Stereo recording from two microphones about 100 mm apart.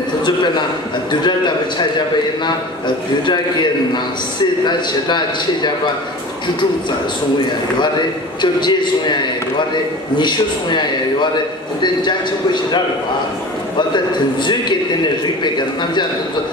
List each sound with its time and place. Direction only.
0.2 s a man's voice: 50° left (ahead or behind)
8.4 s a man's voice: 50° left (ahead or behind)
10.1 s a man's voice: 50° left (ahead or behind)
13.7 s a man's voice: 50° left (ahead or behind)